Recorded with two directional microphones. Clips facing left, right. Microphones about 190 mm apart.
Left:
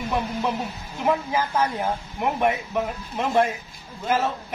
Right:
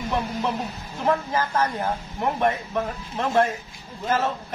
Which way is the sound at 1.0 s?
10° left (ahead or behind).